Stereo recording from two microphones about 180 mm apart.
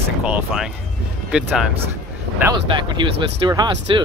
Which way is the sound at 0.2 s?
5° right (ahead or behind).